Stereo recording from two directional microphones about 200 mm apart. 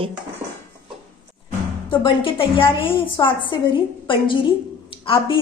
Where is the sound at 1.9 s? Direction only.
25° left (ahead or behind).